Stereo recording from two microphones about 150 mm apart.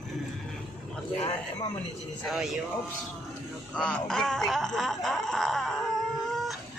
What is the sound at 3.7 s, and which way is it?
Speech, 5° left (ahead or behind).